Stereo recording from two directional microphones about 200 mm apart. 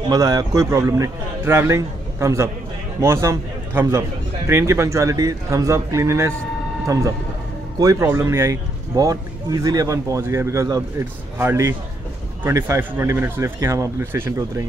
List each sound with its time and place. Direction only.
0.1 s a man's voice: 20° right (ahead or behind)